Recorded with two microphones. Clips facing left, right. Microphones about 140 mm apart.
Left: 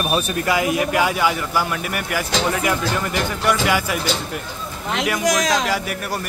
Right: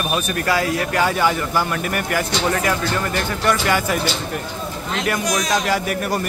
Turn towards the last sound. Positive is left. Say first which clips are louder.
# right 3 dB
turn(degrees=5)  # may be behind; listen again after turning